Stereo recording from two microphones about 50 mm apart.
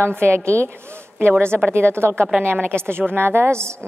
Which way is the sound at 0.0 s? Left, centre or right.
Right.